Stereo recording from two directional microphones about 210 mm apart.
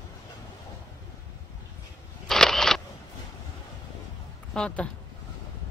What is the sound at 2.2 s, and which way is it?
Single-lens reflex camera, centre (ahead or behind).